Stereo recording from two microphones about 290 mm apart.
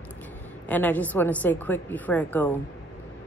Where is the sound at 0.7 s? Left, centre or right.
Centre.